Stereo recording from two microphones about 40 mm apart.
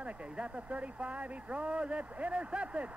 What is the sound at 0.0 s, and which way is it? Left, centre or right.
A man's voice, right.